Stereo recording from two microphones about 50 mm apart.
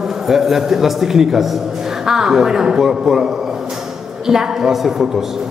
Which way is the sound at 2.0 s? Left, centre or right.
Centre.